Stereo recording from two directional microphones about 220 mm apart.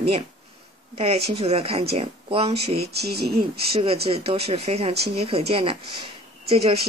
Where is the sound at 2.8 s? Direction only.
45° right (ahead or behind).